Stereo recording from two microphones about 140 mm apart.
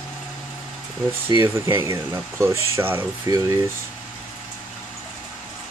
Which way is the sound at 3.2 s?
25° right (ahead or behind).